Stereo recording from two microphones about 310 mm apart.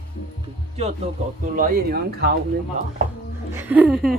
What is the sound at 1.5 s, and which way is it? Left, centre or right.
Speech, right.